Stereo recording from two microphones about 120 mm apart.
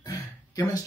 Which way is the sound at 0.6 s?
30° left (ahead or behind).